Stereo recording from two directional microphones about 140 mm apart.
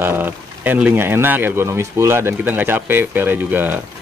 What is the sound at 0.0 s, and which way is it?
Speech, 15° right (ahead or behind).